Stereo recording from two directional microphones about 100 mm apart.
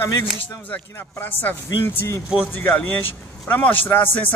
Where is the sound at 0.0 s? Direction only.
20° left (ahead or behind).